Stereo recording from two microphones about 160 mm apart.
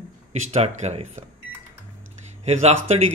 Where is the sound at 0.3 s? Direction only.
45° right (ahead or behind).